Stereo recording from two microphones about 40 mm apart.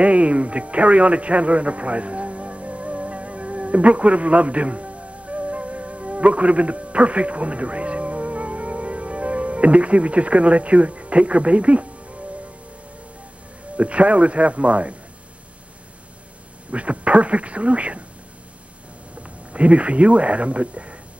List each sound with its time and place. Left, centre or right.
0.0 s music: right
13.7 s speech: right
16.7 s speech: right
19.5 s speech: right